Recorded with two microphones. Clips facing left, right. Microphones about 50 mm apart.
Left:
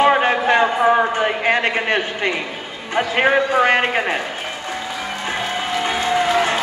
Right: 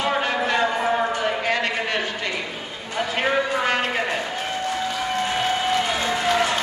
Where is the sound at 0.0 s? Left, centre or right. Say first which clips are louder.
Left 7 dB; left.